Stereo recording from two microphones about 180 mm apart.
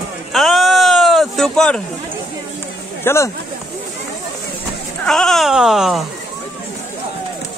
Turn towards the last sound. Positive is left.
turn(degrees=0)  # may be behind; listen again after turning